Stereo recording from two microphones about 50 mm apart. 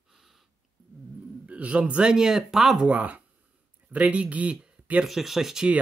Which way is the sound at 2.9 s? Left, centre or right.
Right.